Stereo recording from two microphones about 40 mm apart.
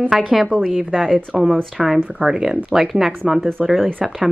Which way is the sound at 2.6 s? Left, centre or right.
Centre.